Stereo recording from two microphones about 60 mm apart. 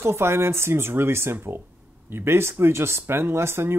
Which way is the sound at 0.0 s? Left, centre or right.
Right.